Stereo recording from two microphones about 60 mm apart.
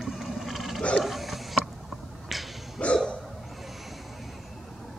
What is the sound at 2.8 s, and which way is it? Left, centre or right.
Hiccup, left.